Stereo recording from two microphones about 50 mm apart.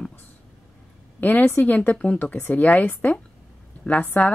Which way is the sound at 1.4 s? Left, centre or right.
Left.